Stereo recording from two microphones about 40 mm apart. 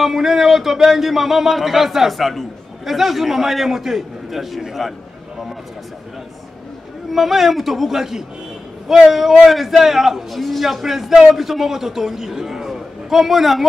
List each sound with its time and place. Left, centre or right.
0.0 s speech: centre
7.1 s a man's voice: centre